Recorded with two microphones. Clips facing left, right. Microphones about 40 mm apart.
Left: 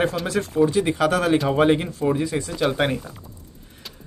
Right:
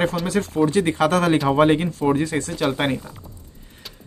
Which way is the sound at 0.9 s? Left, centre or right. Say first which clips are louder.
Right 2 dB; right.